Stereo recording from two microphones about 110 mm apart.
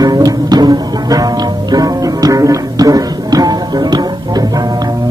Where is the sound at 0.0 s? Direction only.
35° right (ahead or behind).